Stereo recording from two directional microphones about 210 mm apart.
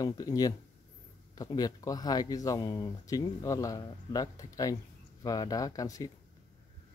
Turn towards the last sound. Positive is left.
turn(degrees=15)  # may be behind; listen again after turning